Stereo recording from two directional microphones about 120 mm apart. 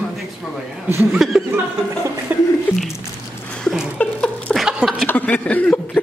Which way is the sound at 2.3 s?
15° right (ahead or behind).